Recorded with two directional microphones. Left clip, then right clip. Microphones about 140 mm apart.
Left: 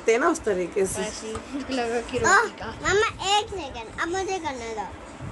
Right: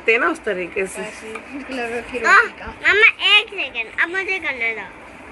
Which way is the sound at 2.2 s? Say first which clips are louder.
Right 6 dB; 90° left.